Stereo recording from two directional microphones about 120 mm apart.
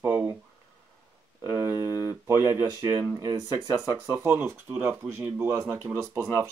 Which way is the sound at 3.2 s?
35° right (ahead or behind).